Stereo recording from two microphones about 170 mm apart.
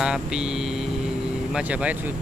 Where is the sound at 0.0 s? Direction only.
5° right (ahead or behind).